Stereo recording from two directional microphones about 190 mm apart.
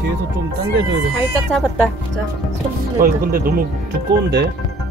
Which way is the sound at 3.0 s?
50° right (ahead or behind).